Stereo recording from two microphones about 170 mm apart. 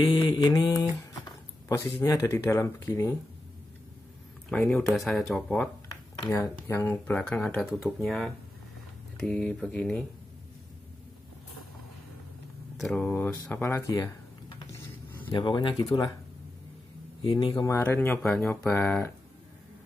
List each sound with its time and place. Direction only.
0.0 s mantra: 25° left (ahead or behind)
1.7 s speech: 20° left (ahead or behind)
4.5 s speech: 5° left (ahead or behind)
6.3 s speech: 15° left (ahead or behind)
8.0 s speech: centre (ahead or behind)
12.7 s speech: 5° left (ahead or behind)
15.3 s speech: 30° left (ahead or behind)
17.2 s speech: 30° left (ahead or behind); by 19.1 s 10° left (ahead or behind)